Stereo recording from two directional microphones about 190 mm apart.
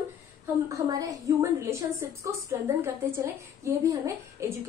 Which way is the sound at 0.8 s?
20° right (ahead or behind).